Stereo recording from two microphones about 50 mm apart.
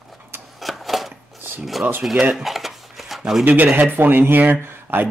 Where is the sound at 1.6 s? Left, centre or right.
Centre.